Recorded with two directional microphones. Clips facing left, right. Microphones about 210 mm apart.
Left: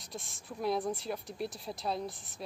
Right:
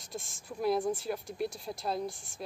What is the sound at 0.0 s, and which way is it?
A woman's voice, centre (ahead or behind).